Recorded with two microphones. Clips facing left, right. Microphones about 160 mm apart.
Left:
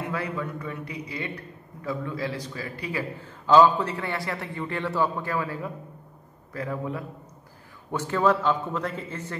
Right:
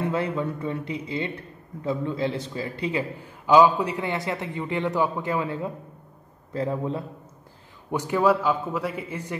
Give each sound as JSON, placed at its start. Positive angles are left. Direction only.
{"t": 0.1, "sound": "a man's voice", "side_deg": -25}
{"t": 7.9, "sound": "a man's voice", "side_deg": -15}